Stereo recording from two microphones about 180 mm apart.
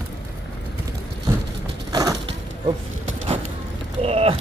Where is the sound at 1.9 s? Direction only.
20° right (ahead or behind).